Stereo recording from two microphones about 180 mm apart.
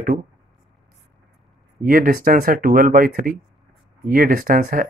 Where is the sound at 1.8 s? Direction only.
50° right (ahead or behind).